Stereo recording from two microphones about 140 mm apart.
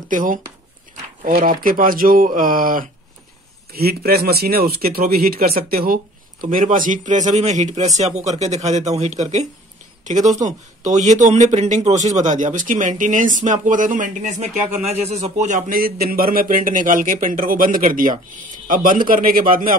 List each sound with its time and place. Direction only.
0.1 s speech: 75° right (ahead or behind)
1.2 s speech: 85° right
6.5 s a man's voice: 75° right (ahead or behind)
19.0 s speech: 90° right